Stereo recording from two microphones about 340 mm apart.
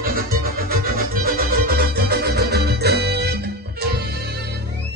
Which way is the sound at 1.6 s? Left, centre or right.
Right.